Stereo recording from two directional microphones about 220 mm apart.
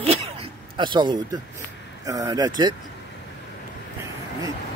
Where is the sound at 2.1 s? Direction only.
15° right (ahead or behind).